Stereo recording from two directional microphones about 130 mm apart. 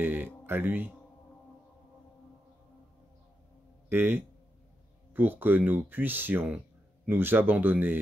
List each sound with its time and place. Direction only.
0.0 s speech: 15° right (ahead or behind)
3.9 s a man's voice: 15° right (ahead or behind)